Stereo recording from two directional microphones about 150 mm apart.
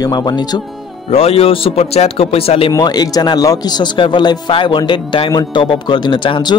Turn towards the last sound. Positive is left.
turn(degrees=30)  # may be behind; listen again after turning